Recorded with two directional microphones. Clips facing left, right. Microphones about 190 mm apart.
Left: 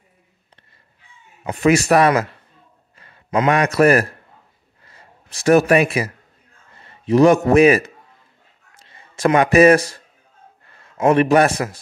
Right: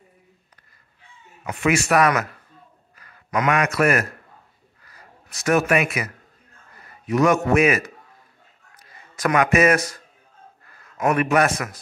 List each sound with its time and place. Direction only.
1.4 s a man's voice: 35° left (ahead or behind)